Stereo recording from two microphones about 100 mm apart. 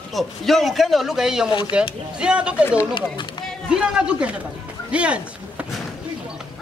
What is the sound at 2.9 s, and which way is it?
Speech, 50° left (ahead or behind).